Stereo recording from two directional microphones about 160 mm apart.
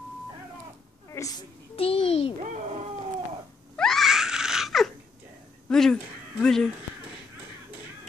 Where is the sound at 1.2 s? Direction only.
15° left (ahead or behind).